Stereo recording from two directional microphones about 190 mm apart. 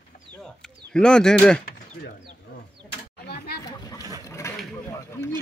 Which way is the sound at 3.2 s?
55° left (ahead or behind).